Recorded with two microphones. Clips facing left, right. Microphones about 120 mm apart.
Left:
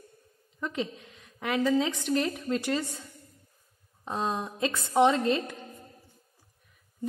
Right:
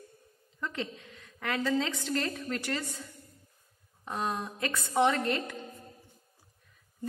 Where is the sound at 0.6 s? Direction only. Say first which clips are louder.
Left 4 dB; 20° left (ahead or behind).